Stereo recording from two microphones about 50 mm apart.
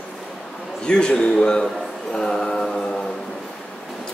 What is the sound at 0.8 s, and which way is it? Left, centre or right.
Speech, centre.